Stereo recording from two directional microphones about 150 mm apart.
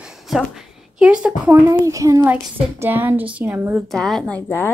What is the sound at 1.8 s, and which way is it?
A child's voice, 20° right (ahead or behind).